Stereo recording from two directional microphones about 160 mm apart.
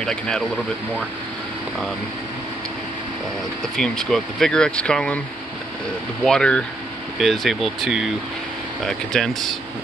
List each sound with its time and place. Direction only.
0.0 s speech: 5° left (ahead or behind)
3.7 s speech: 5° left (ahead or behind)
6.2 s speech: 5° left (ahead or behind)